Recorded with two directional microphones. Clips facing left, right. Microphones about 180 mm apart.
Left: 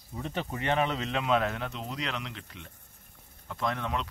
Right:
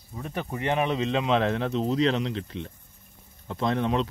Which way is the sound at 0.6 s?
15° right (ahead or behind).